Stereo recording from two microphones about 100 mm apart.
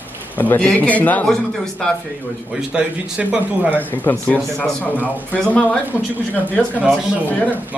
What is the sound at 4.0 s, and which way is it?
Speech, 15° left (ahead or behind).